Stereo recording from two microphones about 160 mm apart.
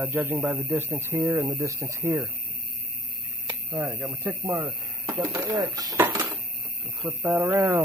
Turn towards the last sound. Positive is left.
turn(degrees=-15)  # may be behind; listen again after turning